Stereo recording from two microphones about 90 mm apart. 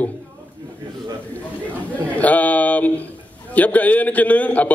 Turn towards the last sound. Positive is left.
turn(degrees=15)  # may be behind; listen again after turning